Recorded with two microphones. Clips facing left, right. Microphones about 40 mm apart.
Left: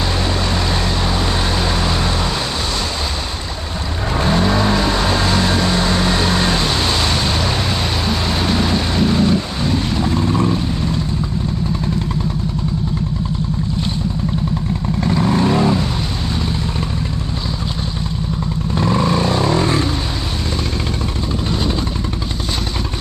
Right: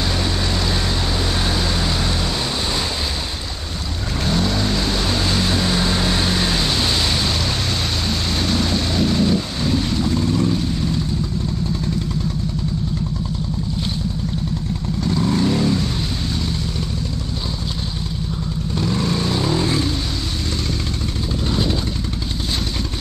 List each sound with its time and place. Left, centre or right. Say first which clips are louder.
4.2 s vehicle: left 5 dB; left
8.1 s vehicle: left 3 dB; centre
15.0 s vehicle: left 3 dB; left
18.8 s vehicle: left 5 dB; left